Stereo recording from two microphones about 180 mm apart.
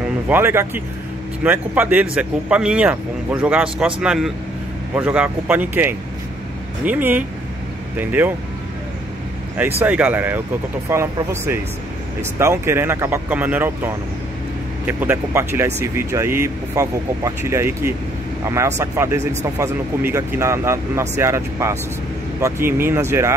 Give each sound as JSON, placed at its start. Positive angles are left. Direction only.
{"t": 0.3, "sound": "speech", "side_deg": -15}
{"t": 9.6, "sound": "speech", "side_deg": -10}